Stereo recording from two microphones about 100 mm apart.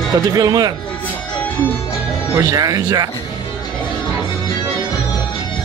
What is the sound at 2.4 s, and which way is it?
Speech, 35° right (ahead or behind).